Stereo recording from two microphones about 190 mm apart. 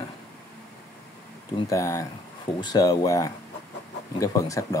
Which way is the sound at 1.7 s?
15° left (ahead or behind).